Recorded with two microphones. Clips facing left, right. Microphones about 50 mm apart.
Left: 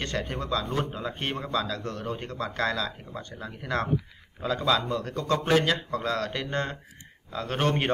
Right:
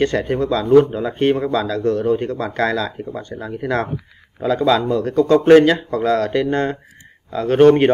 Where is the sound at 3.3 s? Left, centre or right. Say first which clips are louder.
Right 10 dB; right.